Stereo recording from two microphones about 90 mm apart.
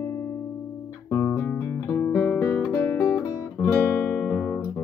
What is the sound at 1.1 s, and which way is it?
Music, 30° left (ahead or behind).